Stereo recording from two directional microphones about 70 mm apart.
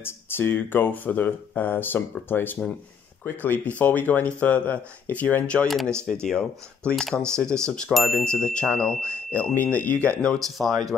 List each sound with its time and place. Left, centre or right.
0.0 s speech: left; by 7.9 s centre
7.9 s speech: centre
8.2 s speech: centre
10.2 s speech: centre